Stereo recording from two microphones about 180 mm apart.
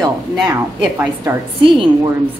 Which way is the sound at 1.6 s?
30° right (ahead or behind).